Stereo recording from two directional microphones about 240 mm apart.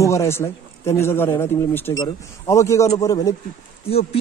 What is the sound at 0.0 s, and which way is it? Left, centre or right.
A man's voice, centre.